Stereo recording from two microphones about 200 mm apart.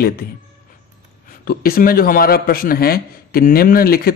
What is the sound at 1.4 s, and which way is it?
A man's voice, 50° left (ahead or behind).